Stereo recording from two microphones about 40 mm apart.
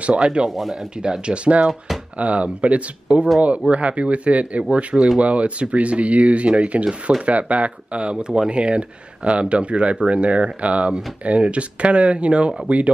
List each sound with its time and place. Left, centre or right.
0.0 s speech: right
0.5 s speech: centre
1.0 s speech: right
7.2 s speech: right